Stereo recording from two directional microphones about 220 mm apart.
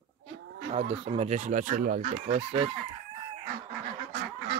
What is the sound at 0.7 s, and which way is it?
Speech, 25° right (ahead or behind).